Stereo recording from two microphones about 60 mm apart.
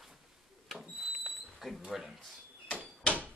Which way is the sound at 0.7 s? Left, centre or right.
Centre.